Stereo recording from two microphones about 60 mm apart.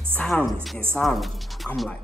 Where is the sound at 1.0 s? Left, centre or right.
Centre.